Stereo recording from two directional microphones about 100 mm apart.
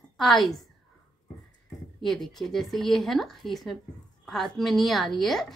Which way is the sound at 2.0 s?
Centre (ahead or behind).